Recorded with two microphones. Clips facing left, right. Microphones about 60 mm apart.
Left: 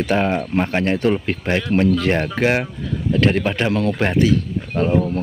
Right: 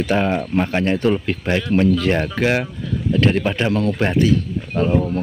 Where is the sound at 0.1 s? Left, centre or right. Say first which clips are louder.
Even; centre.